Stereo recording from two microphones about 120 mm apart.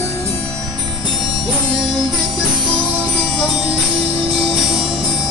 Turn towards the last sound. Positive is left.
turn(degrees=-50)  # may be behind; listen again after turning